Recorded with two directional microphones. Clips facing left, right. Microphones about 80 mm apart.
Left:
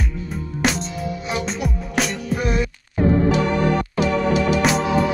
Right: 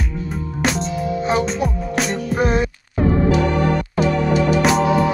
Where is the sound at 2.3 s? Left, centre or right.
Right.